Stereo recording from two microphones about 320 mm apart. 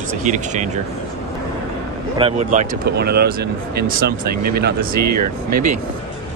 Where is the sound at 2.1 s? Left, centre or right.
Right.